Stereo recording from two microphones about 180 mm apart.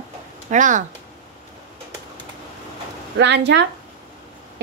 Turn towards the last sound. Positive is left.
turn(degrees=-70)  # may be behind; listen again after turning